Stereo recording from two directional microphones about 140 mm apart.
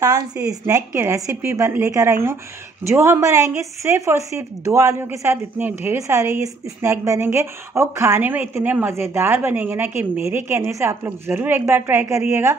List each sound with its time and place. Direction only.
0.3 s a woman's voice: 15° right (ahead or behind)